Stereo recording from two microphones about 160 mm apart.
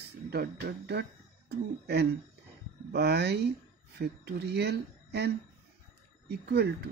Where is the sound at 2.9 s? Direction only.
90° right.